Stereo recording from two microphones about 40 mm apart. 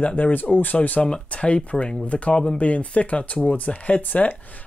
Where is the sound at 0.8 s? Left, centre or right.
Left.